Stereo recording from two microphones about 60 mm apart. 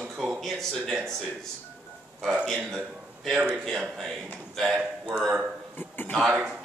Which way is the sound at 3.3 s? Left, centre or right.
Centre.